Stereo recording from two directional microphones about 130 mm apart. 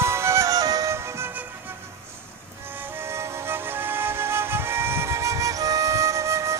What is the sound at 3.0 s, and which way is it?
Music, 20° right (ahead or behind).